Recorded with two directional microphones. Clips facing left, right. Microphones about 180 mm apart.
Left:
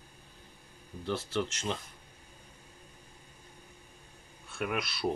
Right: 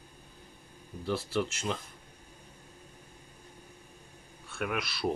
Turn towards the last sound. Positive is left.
turn(degrees=0)  # may be behind; listen again after turning